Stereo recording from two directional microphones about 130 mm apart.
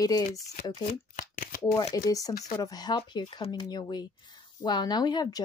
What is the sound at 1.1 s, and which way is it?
Shuffling cards, 90° left.